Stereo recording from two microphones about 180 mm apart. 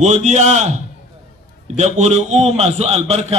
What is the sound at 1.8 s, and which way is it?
A man's voice, 40° right (ahead or behind).